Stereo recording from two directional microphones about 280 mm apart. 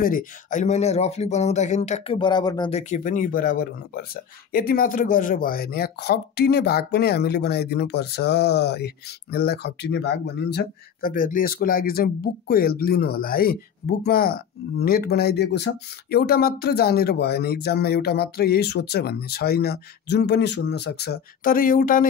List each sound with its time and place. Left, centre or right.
0.0 s speech: left